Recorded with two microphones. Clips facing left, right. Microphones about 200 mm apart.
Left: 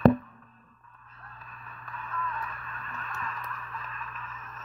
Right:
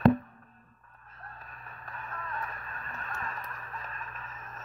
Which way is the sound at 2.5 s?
40° right (ahead or behind).